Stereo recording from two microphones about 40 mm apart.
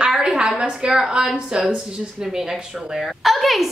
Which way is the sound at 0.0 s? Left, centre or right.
Centre.